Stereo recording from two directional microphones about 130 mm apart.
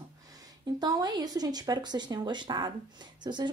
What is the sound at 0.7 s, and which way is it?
A woman's voice, 30° right (ahead or behind).